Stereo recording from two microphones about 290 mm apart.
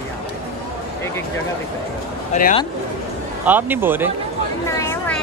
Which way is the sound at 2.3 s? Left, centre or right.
Left.